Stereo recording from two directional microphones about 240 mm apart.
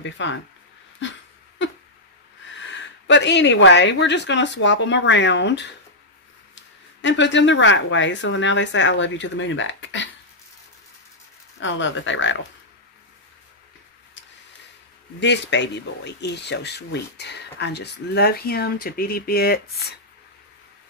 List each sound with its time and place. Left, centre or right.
0.0 s speech: left
2.5 s speech: left
7.0 s speech: left
11.6 s speech: left
15.1 s speech: left